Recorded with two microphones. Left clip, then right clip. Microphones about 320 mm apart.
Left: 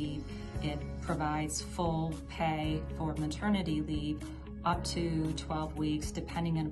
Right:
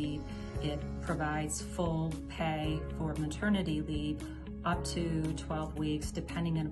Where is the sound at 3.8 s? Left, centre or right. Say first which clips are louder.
Left 1 dB; left.